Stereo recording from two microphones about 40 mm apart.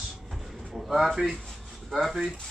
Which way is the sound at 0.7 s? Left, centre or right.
Centre.